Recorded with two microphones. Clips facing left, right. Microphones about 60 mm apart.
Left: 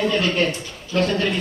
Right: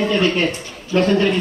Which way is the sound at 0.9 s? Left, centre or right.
Centre.